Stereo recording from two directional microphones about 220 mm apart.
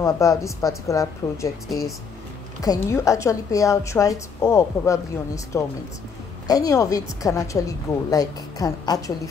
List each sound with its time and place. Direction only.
0.0 s a woman's voice: 15° left (ahead or behind)
2.6 s a woman's voice: 15° left (ahead or behind)